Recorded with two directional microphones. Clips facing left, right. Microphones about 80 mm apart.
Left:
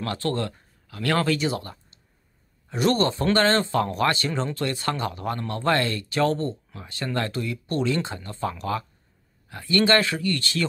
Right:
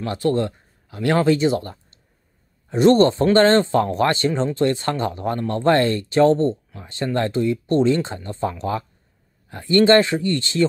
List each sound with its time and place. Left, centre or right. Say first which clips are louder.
0.0 s speech: right 6 dB; right